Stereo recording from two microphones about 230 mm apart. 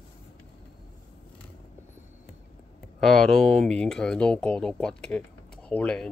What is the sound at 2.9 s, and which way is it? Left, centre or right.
Speech, centre.